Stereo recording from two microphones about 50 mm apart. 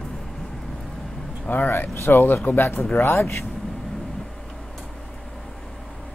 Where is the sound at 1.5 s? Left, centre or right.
Left.